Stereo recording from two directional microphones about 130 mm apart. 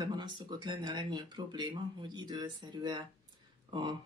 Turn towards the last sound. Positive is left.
turn(degrees=-35)  # may be behind; listen again after turning